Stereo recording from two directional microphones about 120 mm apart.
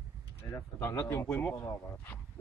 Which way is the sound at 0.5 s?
15° left (ahead or behind).